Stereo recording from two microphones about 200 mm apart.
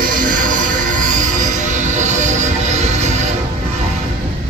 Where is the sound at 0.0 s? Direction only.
45° right (ahead or behind).